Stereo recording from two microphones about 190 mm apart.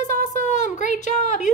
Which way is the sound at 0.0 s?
40° left (ahead or behind).